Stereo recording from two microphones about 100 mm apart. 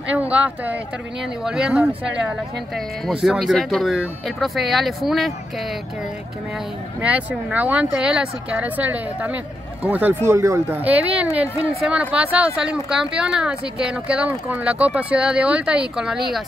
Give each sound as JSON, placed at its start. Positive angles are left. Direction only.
{"t": 0.1, "sound": "speech", "side_deg": -15}
{"t": 7.0, "sound": "speech", "side_deg": -15}
{"t": 10.3, "sound": "speech", "side_deg": -30}
{"t": 10.8, "sound": "speech", "side_deg": -15}